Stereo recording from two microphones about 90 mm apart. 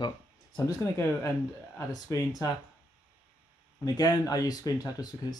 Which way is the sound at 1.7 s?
40° left (ahead or behind).